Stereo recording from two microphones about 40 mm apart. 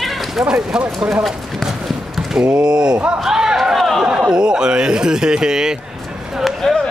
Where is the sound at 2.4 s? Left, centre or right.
Right.